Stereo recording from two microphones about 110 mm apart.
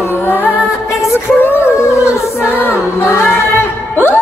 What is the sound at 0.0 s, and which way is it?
Music, 20° left (ahead or behind).